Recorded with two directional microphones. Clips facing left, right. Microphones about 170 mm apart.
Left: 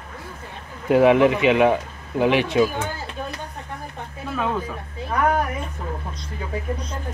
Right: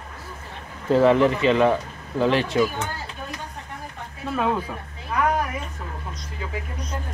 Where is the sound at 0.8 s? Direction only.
15° left (ahead or behind).